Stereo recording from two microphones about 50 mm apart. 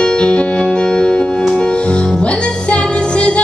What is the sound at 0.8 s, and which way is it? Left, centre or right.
Music, centre.